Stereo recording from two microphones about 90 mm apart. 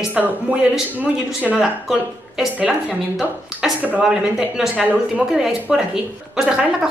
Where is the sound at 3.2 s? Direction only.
20° right (ahead or behind).